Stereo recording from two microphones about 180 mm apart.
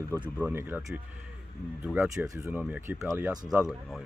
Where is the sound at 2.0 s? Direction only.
20° right (ahead or behind).